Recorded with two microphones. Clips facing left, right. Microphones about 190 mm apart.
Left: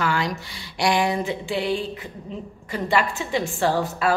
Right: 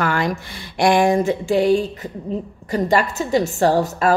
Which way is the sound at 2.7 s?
40° right (ahead or behind).